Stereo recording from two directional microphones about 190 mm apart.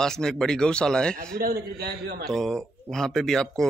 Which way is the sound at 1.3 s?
55° right (ahead or behind).